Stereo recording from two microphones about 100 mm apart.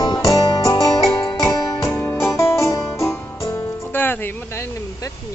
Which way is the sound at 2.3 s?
30° left (ahead or behind).